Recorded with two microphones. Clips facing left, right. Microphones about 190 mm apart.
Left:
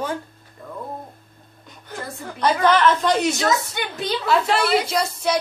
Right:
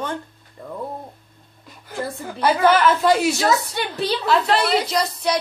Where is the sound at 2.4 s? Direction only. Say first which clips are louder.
Right 1 dB; 10° right (ahead or behind).